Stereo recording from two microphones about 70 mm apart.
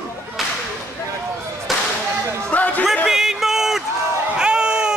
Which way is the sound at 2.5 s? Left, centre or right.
Left.